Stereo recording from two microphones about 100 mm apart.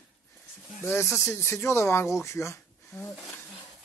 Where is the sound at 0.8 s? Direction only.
25° left (ahead or behind).